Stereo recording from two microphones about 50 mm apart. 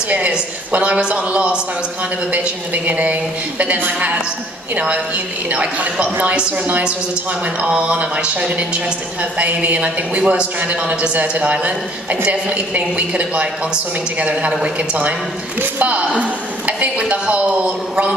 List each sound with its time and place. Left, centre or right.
0.7 s a man's voice: right
7.6 s a man's voice: centre
15.6 s speech: right